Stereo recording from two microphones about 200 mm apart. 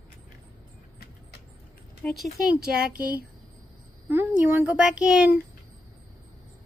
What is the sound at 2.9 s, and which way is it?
Speech, 45° right (ahead or behind).